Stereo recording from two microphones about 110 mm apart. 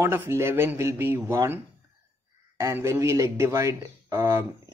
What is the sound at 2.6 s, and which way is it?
Speech, 25° right (ahead or behind).